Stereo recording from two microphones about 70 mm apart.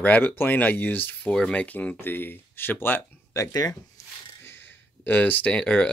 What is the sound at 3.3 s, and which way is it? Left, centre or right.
Speech, left.